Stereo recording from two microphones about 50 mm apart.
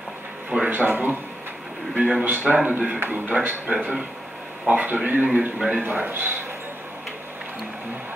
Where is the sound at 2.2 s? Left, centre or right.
Right.